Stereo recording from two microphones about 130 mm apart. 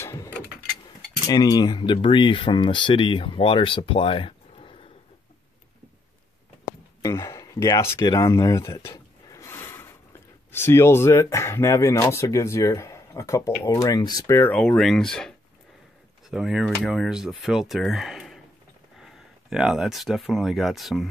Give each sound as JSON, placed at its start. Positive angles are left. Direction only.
{"t": 0.0, "sound": "a sound", "side_deg": 20}
{"t": 1.2, "sound": "speech", "side_deg": 30}
{"t": 7.0, "sound": "speech", "side_deg": 25}
{"t": 8.1, "sound": "a sound", "side_deg": 25}
{"t": 10.5, "sound": "speech", "side_deg": 20}
{"t": 14.5, "sound": "speech", "side_deg": 10}